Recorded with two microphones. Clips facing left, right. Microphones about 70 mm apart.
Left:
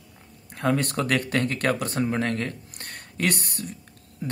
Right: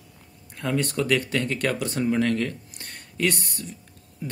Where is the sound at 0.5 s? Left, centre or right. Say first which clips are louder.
Left 1 dB; left.